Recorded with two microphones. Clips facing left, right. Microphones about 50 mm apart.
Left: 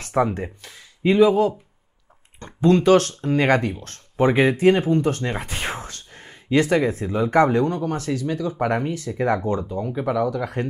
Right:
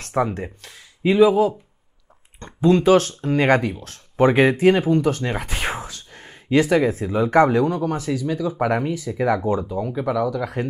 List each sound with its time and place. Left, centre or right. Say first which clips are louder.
0.0 s speech: left 1 dB; centre
9.7 s speech: right 1 dB; centre